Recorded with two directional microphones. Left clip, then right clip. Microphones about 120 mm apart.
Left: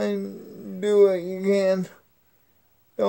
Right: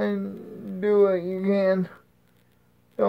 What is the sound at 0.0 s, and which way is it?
Speech, 25° left (ahead or behind).